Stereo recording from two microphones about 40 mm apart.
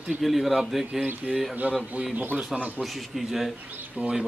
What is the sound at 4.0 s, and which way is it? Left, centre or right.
Speech, right.